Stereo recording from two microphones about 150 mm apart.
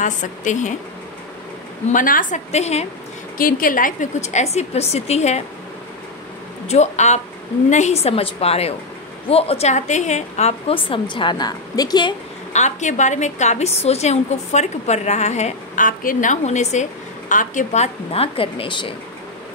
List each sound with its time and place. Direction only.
0.0 s a woman's voice: 55° left (ahead or behind)
1.9 s a woman's voice: 65° left (ahead or behind); by 2.9 s 45° left (ahead or behind)
3.3 s a woman's voice: 70° left (ahead or behind); by 5.4 s 45° left (ahead or behind)
6.7 s a woman's voice: 50° left (ahead or behind); by 12.1 s 25° left (ahead or behind)
12.5 s a woman's voice: 50° left (ahead or behind); by 18.9 s 35° left (ahead or behind)